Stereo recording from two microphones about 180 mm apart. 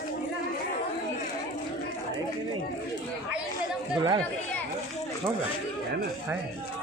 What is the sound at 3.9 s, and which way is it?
Speech, 25° right (ahead or behind).